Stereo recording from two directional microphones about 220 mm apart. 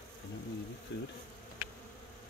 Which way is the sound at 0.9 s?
50° left (ahead or behind).